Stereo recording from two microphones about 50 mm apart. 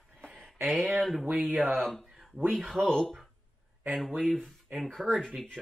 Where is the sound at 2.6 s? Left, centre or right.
Centre.